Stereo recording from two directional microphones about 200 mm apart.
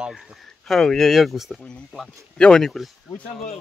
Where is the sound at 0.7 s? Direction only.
Centre (ahead or behind).